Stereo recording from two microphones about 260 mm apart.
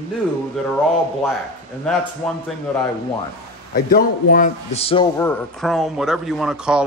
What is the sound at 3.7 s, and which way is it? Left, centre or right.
A man's voice, left.